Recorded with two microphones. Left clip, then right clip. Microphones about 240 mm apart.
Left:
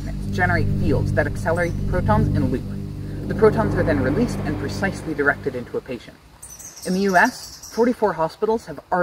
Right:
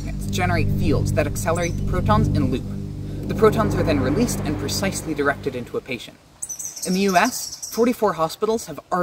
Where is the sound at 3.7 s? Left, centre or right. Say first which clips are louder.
Left 1 dB; centre.